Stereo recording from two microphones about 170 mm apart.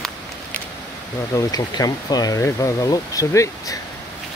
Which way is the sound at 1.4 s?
20° left (ahead or behind).